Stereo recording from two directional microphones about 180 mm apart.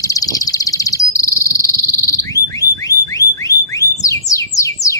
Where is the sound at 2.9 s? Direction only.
20° left (ahead or behind).